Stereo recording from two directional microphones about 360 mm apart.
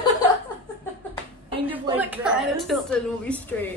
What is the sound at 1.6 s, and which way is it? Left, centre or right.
A woman's voice, centre.